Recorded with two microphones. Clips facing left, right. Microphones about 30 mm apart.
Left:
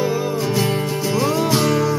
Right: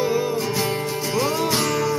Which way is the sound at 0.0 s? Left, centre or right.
Centre.